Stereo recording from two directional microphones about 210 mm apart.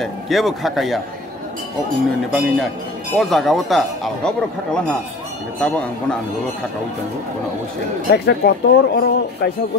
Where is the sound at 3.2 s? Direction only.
Centre (ahead or behind).